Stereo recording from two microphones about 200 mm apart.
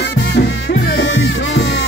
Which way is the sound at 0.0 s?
60° left (ahead or behind).